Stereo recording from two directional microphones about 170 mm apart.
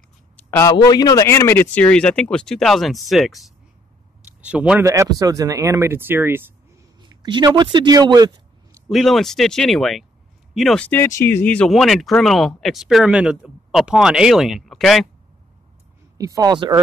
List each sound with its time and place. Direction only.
0.5 s speech: 20° left (ahead or behind); by 6.5 s 10° right (ahead or behind)
7.0 s speech: 25° right (ahead or behind)
8.8 s speech: centre (ahead or behind)
16.2 s speech: 20° right (ahead or behind)